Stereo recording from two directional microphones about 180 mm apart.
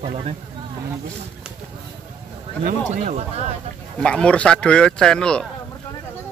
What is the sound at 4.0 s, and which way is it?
Speech, 5° left (ahead or behind).